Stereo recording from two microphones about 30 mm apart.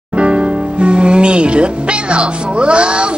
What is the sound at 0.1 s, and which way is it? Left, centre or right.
Music, right.